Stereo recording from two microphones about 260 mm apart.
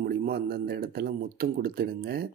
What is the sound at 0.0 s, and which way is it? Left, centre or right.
Speech, right.